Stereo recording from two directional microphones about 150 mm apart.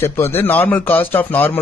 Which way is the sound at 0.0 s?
15° left (ahead or behind).